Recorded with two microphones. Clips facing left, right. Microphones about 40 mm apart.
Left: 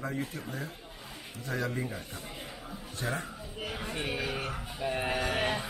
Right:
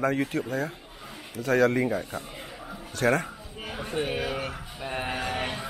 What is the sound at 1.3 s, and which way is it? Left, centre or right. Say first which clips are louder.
Speech: right 12 dB; right.